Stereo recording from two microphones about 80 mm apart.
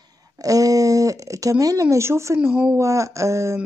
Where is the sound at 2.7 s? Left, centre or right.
Right.